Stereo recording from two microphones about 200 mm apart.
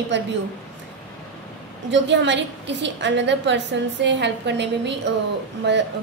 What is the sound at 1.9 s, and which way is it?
A woman's voice, 65° right (ahead or behind).